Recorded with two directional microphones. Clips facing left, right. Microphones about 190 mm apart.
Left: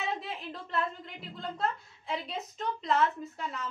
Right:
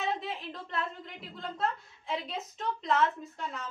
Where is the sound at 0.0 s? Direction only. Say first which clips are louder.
Right 2 dB; centre (ahead or behind).